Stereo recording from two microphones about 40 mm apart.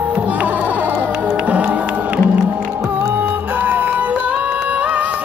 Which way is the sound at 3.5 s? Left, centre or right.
Right.